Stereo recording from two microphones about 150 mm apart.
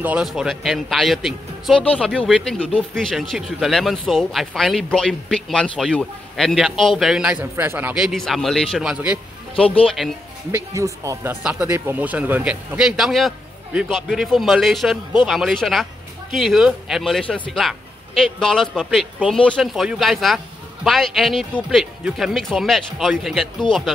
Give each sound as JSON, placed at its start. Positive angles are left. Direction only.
{"t": 0.0, "sound": "speech", "side_deg": -5}
{"t": 7.9, "sound": "speech", "side_deg": 0}
{"t": 10.5, "sound": "speech", "side_deg": -20}